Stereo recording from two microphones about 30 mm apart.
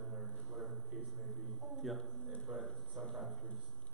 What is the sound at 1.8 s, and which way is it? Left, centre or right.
Speech, centre.